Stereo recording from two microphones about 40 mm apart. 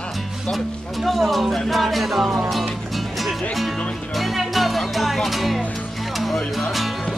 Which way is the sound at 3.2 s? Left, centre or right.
Centre.